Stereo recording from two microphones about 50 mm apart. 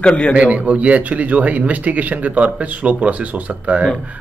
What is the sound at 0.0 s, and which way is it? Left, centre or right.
Speech, left.